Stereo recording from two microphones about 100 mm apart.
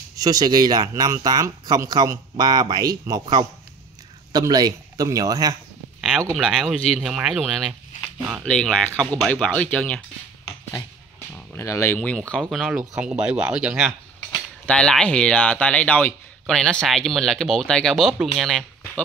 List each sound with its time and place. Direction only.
0.1 s speech: 40° right (ahead or behind)
5.9 s a sound: 5° right (ahead or behind)
6.3 s speech: 5° right (ahead or behind); by 10.0 s 10° left (ahead or behind)
11.5 s speech: 30° left (ahead or behind)
12.0 s speech: 10° left (ahead or behind); by 13.8 s 10° right (ahead or behind)
14.7 s speech: 10° left (ahead or behind)